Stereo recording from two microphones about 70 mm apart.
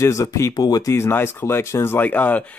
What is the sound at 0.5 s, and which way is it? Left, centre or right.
Speech, left.